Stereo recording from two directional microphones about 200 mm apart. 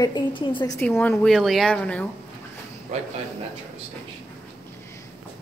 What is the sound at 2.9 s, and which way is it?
Speech, 35° right (ahead or behind).